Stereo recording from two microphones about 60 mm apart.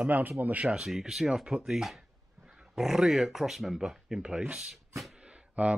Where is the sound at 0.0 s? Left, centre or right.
Right.